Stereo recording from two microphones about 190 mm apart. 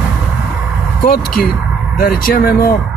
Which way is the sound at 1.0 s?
55° left (ahead or behind).